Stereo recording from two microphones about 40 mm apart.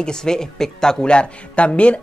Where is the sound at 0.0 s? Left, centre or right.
Centre.